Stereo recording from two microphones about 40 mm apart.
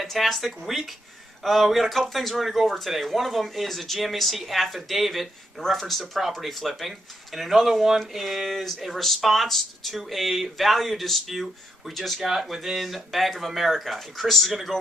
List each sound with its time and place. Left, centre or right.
0.0 s speech: centre
12.2 s speech: centre